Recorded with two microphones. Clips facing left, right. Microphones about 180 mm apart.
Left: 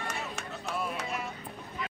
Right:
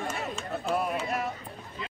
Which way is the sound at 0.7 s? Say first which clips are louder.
Right 6 dB; 55° right (ahead or behind).